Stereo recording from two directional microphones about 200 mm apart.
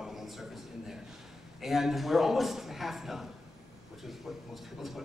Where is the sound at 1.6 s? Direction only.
Centre (ahead or behind).